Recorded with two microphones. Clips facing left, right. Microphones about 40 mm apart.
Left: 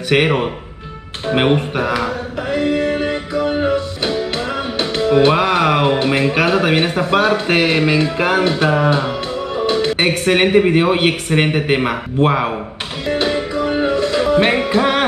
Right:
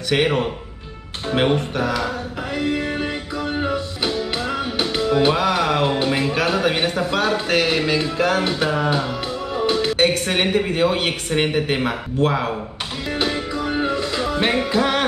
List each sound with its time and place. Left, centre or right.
0.1 s speech: left
2.5 s music: centre
5.3 s speech: left
9.9 s speech: left
13.0 s music: centre